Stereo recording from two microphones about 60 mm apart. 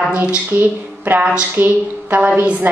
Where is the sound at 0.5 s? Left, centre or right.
Right.